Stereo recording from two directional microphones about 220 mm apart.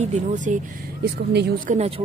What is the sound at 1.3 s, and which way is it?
Speech, 50° right (ahead or behind).